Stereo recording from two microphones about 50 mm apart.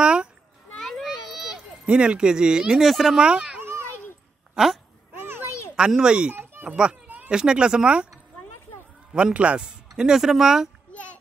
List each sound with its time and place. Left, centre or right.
0.0 s children playing: centre
0.7 s children playing: centre
1.9 s speech: centre
3.2 s a child's voice: centre
3.6 s a sound: right
5.2 s a sound: right
5.8 s speech: centre
6.3 s a sound: right
7.2 s speech: centre
9.1 s speech: right
9.6 s speech: centre